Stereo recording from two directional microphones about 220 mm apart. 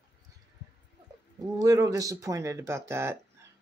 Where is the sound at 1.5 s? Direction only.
15° right (ahead or behind).